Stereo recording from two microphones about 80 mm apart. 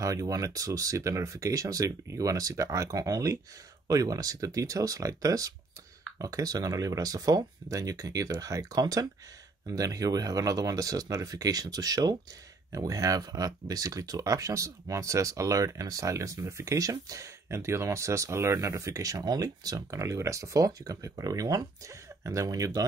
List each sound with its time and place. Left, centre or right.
0.0 s speech: right